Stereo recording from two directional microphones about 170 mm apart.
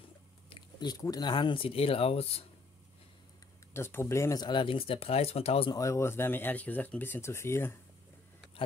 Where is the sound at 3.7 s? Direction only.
15° left (ahead or behind); by 5.7 s 35° left (ahead or behind).